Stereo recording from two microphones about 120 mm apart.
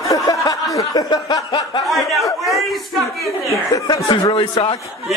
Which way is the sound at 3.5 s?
30° left (ahead or behind).